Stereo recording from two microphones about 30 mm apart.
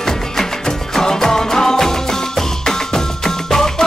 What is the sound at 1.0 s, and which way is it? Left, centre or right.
Music, centre.